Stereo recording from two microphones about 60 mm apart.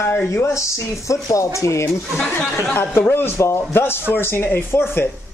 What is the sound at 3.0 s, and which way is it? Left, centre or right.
Speech, left.